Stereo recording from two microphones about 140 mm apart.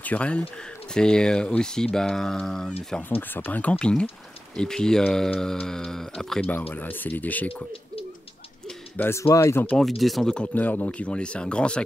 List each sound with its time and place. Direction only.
0.0 s speech: 10° left (ahead or behind)
8.6 s speech: 15° left (ahead or behind)
9.8 s speech: centre (ahead or behind)